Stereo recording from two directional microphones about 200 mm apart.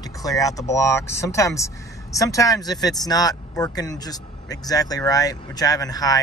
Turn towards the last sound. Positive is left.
turn(degrees=20)  # may be behind; listen again after turning